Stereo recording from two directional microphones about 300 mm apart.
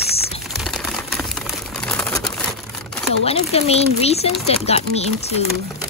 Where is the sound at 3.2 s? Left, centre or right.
Centre.